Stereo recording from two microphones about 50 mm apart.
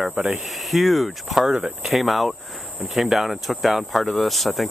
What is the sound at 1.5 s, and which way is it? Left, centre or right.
Speech, centre.